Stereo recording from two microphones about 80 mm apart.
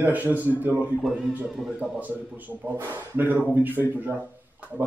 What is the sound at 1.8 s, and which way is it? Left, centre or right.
Speech, right.